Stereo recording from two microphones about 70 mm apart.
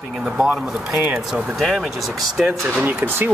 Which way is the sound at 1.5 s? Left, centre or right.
Centre.